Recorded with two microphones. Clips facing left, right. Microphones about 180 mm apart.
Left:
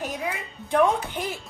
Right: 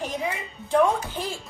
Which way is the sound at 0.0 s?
5° left (ahead or behind).